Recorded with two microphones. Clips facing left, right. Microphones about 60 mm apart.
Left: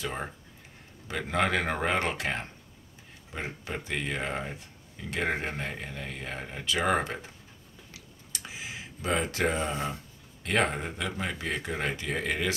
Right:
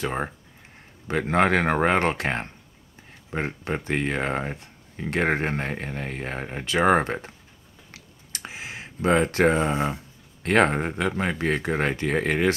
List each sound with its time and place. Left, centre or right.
0.0 s speech: right
7.9 s a sound: right
10.4 s speech: right